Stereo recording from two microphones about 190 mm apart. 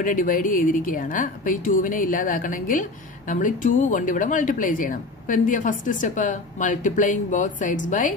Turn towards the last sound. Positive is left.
turn(degrees=40)  # may be behind; listen again after turning